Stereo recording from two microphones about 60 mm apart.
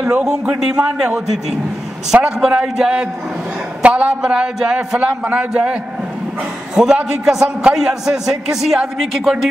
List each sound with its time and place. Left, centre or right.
0.0 s a man's voice: centre
2.4 s a man's voice: centre
4.7 s a man's voice: right; by 9.3 s centre